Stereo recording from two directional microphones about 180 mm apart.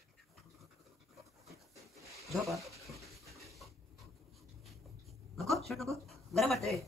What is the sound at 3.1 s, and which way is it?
Pant, centre (ahead or behind).